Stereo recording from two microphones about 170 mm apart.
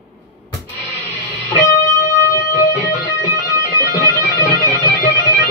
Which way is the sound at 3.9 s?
20° left (ahead or behind).